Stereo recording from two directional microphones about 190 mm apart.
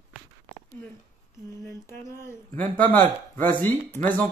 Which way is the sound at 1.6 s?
15° left (ahead or behind).